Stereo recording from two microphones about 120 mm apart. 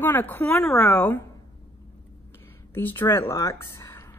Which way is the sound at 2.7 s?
15° left (ahead or behind).